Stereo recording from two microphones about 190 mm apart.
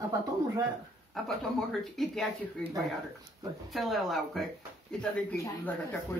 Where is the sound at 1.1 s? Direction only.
Centre (ahead or behind).